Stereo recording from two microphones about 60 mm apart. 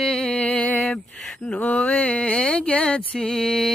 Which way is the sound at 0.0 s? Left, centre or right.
Centre.